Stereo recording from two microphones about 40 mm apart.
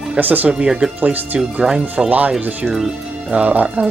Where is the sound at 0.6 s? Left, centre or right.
Centre.